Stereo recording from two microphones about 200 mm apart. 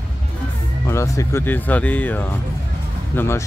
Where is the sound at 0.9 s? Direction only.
15° left (ahead or behind).